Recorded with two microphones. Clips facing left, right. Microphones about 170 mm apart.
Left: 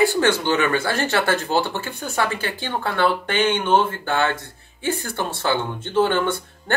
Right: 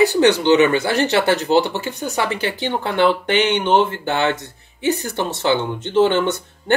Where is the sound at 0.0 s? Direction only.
20° right (ahead or behind).